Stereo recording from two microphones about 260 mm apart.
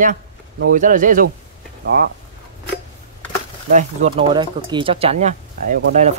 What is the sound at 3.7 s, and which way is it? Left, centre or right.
Speech, right.